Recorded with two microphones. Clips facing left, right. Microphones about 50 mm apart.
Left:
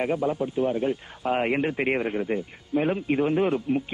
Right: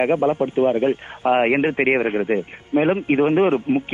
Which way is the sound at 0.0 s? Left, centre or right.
Right.